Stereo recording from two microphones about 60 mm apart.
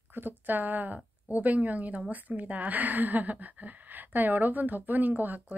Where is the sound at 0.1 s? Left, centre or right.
Right.